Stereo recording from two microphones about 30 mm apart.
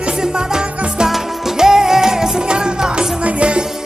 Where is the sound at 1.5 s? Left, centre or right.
Centre.